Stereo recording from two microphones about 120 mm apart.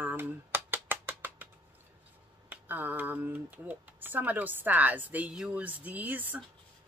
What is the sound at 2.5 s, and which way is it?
Speech, 15° right (ahead or behind).